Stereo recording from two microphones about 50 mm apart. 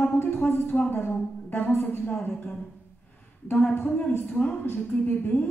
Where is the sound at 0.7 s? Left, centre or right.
Left.